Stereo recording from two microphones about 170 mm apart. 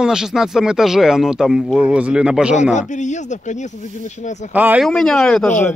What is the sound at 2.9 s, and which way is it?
Speech, 45° left (ahead or behind).